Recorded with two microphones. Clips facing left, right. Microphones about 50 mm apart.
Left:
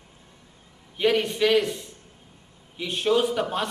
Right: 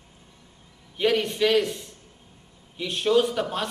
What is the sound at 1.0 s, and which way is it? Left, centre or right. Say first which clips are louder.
A man's voice: left 1 dB; centre.